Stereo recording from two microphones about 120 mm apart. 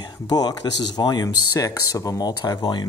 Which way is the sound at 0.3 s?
35° left (ahead or behind).